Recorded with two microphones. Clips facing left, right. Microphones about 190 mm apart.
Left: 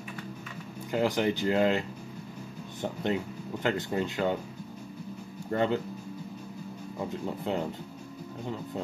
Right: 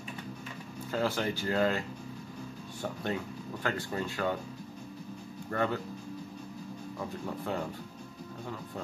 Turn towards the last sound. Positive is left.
turn(degrees=20)  # may be behind; listen again after turning